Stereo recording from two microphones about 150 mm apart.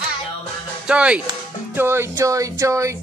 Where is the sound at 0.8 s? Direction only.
10° right (ahead or behind).